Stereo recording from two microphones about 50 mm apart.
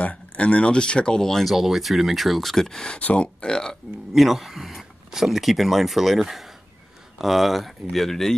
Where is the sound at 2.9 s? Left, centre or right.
Left.